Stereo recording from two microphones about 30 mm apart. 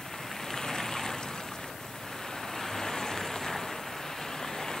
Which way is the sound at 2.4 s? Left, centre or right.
Centre.